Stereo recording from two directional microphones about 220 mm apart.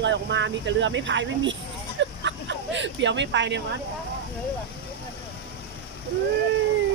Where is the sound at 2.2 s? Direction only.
55° right (ahead or behind).